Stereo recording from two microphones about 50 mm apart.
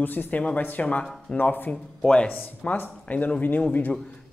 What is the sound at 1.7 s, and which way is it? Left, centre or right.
Speech, centre.